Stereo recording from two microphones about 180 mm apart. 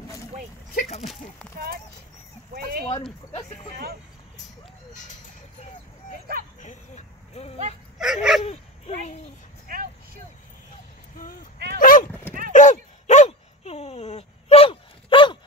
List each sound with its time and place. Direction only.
0.7 s speech: 35° left (ahead or behind)
2.9 s speech: 25° left (ahead or behind)
6.6 s speech: 40° left (ahead or behind)
8.0 s speech: centre (ahead or behind)
11.5 s dog: 65° right (ahead or behind)
11.8 s dog: 50° left (ahead or behind)
12.5 s a sound: 45° left (ahead or behind)